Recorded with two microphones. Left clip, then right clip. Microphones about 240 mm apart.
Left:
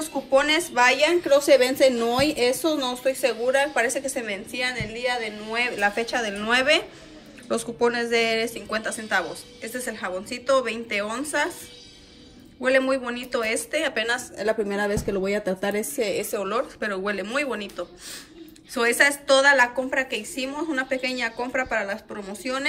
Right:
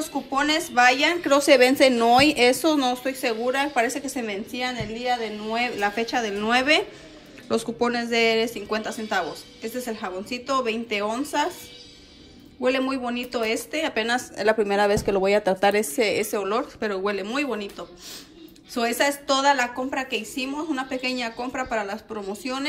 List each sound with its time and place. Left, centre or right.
0.0 s a woman's voice: centre
12.6 s a woman's voice: centre